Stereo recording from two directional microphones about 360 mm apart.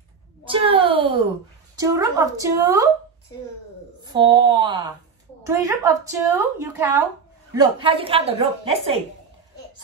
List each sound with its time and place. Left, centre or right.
0.5 s a sound: centre
1.8 s a woman's voice: centre
4.0 s a woman's voice: centre